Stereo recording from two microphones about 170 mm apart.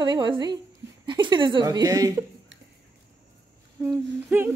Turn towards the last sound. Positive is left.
turn(degrees=-10)  # may be behind; listen again after turning